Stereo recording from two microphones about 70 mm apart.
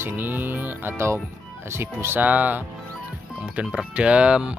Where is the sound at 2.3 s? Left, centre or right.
Right.